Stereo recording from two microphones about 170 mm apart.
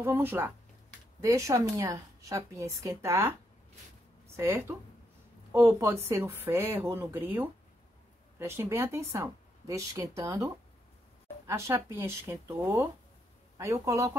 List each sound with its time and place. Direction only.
0.0 s a woman's voice: 15° right (ahead or behind)
4.4 s speech: 15° right (ahead or behind)